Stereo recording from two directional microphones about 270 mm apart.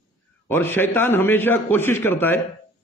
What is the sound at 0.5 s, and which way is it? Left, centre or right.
A man's voice, centre.